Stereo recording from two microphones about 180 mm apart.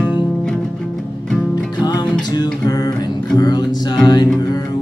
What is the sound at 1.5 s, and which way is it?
Music, 20° left (ahead or behind).